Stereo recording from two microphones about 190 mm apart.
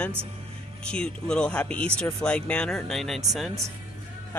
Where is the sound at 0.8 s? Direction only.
5° left (ahead or behind).